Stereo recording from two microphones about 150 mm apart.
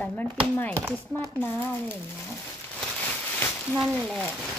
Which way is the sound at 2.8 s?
10° left (ahead or behind).